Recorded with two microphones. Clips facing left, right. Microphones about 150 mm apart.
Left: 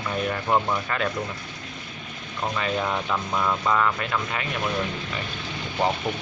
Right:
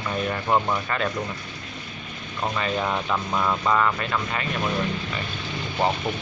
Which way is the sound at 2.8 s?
5° right (ahead or behind).